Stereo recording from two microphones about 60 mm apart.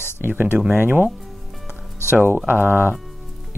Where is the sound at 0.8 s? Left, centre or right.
Right.